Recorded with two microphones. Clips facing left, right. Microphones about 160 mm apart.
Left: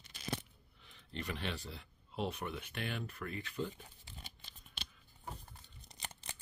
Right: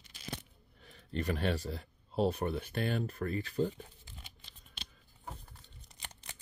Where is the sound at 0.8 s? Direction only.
45° right (ahead or behind).